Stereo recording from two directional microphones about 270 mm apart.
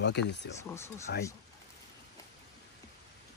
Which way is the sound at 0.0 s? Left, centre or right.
Left.